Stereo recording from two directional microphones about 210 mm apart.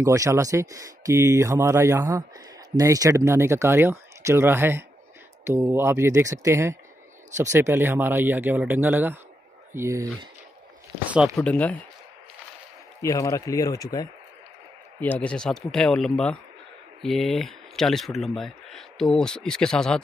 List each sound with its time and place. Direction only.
0.0 s speech: 15° right (ahead or behind)
11.3 s speech: 5° left (ahead or behind)
13.0 s speech: 15° left (ahead or behind)